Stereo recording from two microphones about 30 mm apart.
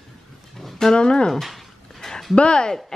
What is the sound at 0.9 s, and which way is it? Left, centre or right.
Speech, left.